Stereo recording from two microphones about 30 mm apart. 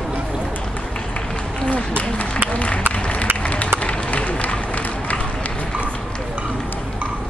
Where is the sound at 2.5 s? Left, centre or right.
Left.